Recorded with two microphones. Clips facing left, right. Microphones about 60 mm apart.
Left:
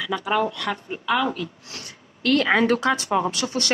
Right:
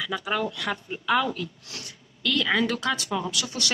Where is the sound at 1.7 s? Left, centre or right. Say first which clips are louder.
Left 2 dB; left.